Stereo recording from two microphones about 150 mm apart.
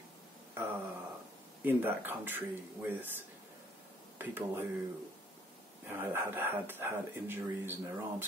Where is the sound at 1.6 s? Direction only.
15° right (ahead or behind).